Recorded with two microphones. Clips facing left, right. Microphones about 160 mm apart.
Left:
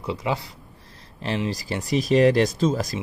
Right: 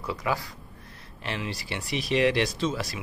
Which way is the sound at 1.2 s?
35° left (ahead or behind).